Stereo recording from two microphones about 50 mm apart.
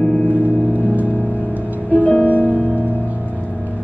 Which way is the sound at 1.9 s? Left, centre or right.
Left.